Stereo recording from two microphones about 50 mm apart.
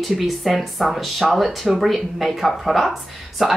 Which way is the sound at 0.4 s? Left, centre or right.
Centre.